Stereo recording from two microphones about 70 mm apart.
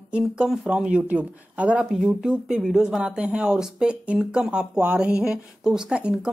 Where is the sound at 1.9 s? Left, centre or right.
Centre.